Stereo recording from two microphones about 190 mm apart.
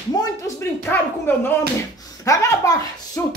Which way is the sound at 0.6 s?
10° left (ahead or behind).